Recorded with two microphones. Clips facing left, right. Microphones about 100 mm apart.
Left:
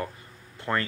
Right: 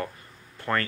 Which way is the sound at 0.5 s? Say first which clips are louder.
Right 1 dB; 15° left (ahead or behind).